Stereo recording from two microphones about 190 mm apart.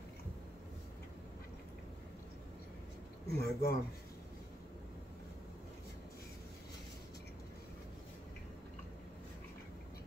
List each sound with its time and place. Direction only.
3.3 s speech: 55° left (ahead or behind)